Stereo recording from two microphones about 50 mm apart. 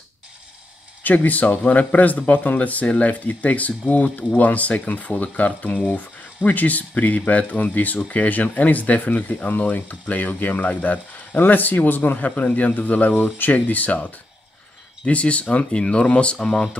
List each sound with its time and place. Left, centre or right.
1.0 s speech: left
15.0 s speech: left
16.3 s speech: centre